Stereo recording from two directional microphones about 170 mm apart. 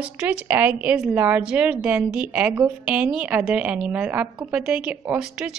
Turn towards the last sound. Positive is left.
turn(degrees=-5)  # may be behind; listen again after turning